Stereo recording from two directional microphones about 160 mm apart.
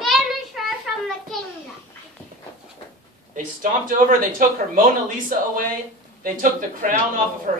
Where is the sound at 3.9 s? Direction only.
60° right (ahead or behind).